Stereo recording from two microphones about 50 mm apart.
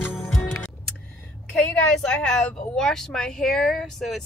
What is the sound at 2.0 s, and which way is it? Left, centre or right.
Speech, centre.